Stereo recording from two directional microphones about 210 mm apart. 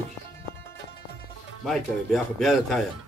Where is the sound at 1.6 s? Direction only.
Centre (ahead or behind).